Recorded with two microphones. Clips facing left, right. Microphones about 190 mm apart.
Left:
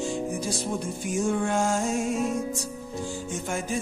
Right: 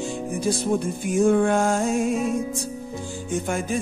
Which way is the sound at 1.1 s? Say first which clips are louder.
Right 7 dB; 60° right (ahead or behind).